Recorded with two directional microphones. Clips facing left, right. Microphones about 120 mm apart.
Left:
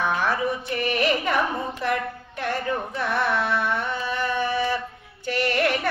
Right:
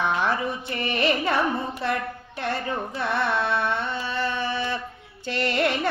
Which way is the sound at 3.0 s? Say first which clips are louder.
Even; 25° right (ahead or behind).